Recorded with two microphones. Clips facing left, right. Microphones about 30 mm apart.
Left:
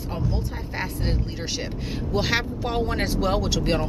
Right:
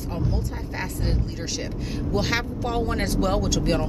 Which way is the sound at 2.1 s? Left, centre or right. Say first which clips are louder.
Left 1 dB; centre.